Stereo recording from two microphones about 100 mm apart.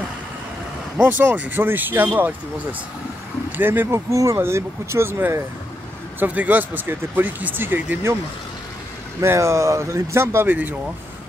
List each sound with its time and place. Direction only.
1.0 s speech: 15° right (ahead or behind)
3.5 s speech: 20° right (ahead or behind)
9.2 s speech: 25° right (ahead or behind)